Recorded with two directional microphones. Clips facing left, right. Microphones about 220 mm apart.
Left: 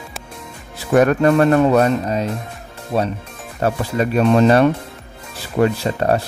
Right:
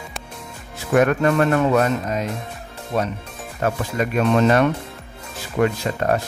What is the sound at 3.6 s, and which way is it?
Speech, 30° left (ahead or behind).